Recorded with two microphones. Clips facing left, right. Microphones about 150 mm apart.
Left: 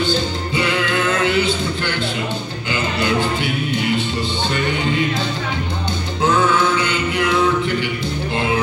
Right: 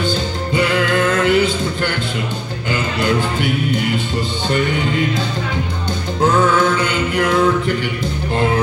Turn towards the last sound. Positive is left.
turn(degrees=-45)  # may be behind; listen again after turning